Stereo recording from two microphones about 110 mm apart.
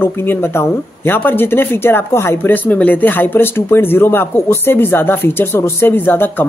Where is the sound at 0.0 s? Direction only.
20° left (ahead or behind).